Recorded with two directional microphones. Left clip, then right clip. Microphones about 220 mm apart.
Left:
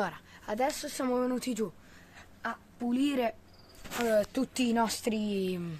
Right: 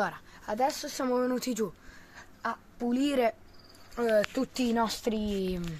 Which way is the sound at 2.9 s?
30° right (ahead or behind).